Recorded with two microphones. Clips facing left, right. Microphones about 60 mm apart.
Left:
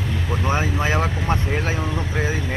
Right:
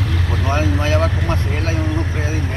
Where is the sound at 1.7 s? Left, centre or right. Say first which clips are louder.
Right 3 dB; right.